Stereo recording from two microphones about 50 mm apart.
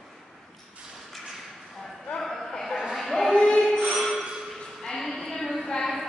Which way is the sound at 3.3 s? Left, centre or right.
Centre.